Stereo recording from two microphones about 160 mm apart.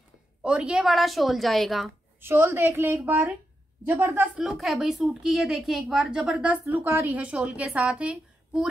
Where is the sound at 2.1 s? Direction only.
15° right (ahead or behind).